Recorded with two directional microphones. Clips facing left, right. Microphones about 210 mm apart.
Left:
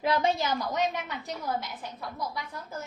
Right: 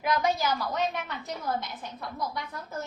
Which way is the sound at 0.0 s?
25° left (ahead or behind).